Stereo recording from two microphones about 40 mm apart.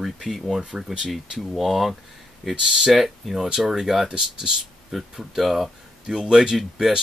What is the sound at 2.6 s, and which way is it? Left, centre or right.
Speech, centre.